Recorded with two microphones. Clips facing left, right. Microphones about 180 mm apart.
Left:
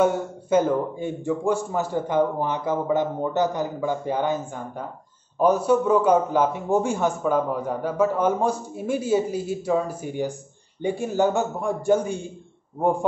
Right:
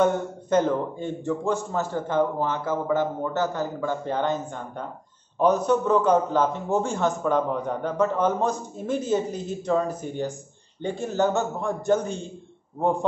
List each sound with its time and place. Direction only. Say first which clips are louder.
0.0 s a man's voice: left 1 dB; 10° left (ahead or behind)